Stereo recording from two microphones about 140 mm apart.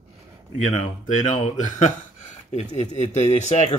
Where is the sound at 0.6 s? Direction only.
60° left (ahead or behind).